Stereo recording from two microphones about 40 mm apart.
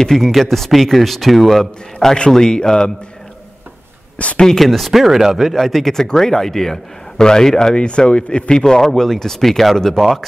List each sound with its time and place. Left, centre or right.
0.1 s a man's voice: centre
4.2 s a sound: left
4.6 s a man's voice: centre